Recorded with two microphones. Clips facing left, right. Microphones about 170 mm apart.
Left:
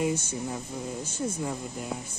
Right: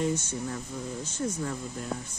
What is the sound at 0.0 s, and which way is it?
Speech, 10° left (ahead or behind).